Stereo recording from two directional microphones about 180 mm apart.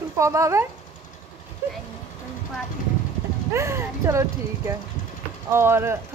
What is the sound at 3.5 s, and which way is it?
Speech, 15° right (ahead or behind).